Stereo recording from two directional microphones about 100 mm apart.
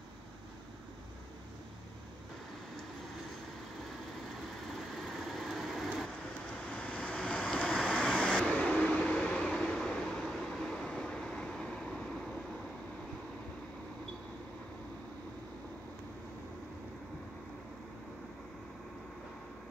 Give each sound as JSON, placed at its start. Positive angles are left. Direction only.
{"t": 4.9, "sound": "vehicle", "side_deg": 0}
{"t": 6.7, "sound": "vehicle", "side_deg": 10}